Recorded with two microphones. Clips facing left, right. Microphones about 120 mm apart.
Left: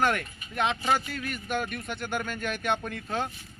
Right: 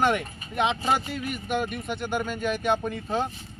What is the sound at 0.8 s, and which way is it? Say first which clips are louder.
Speech: right 2 dB; 25° right (ahead or behind).